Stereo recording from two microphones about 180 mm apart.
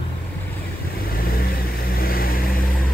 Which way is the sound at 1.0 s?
55° left (ahead or behind).